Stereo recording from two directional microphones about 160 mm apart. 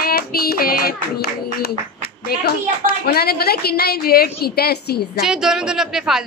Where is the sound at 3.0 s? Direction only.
75° left (ahead or behind).